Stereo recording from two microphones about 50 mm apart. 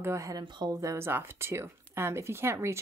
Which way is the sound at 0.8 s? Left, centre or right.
Right.